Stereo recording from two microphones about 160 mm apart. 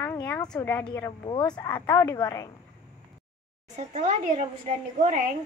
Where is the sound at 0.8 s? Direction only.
25° left (ahead or behind).